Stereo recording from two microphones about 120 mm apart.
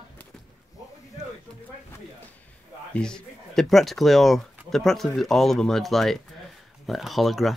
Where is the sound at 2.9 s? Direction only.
5° left (ahead or behind).